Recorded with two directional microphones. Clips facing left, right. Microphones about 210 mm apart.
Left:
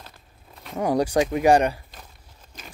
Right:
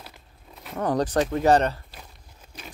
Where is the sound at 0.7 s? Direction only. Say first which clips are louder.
Left 2 dB; 10° left (ahead or behind).